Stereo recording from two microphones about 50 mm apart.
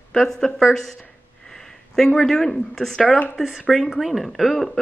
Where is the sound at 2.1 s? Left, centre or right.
Centre.